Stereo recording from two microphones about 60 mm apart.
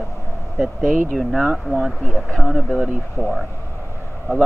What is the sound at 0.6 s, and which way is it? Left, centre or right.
Speech, centre.